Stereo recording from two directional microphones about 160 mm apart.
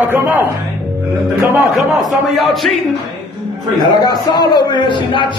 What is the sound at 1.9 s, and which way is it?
Speech, centre (ahead or behind).